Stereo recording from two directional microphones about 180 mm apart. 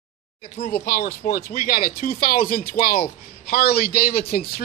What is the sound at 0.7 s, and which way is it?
A man's voice, 55° left (ahead or behind).